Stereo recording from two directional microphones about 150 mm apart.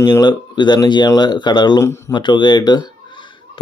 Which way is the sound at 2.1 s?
30° left (ahead or behind).